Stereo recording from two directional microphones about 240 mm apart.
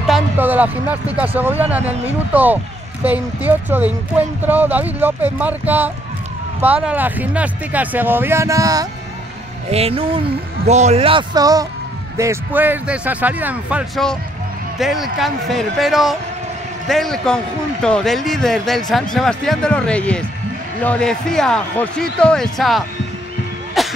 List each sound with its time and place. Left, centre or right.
0.0 s speech: centre
9.7 s a man's voice: right; by 22.8 s centre
23.8 s a sound: centre